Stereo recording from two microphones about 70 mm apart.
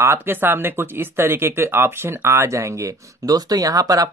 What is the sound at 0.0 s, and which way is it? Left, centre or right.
Speech, right.